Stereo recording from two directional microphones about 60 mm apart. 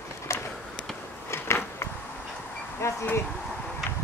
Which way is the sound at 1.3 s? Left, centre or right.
Left.